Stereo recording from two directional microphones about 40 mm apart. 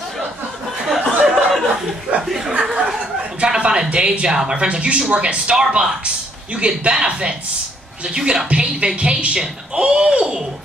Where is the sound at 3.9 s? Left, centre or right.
Right.